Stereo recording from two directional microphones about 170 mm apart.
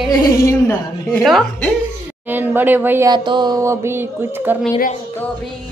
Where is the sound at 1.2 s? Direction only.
Centre (ahead or behind).